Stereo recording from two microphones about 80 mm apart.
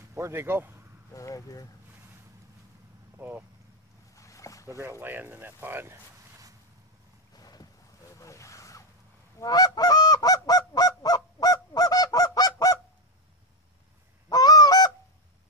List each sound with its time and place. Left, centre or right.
0.1 s speech: right
1.1 s speech: left
3.2 s speech: right
4.1 s boat: left
4.7 s speech: right
7.3 s boat: left
8.1 s a sound: left
9.4 s honk: left
14.3 s goose: left